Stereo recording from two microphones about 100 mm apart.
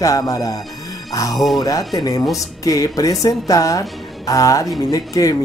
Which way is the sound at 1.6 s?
35° left (ahead or behind).